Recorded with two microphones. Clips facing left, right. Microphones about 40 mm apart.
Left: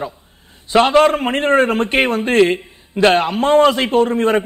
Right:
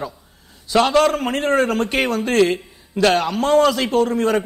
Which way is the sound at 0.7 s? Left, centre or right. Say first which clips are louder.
Left 4 dB; left.